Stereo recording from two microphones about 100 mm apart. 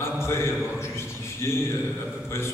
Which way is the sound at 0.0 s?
25° left (ahead or behind).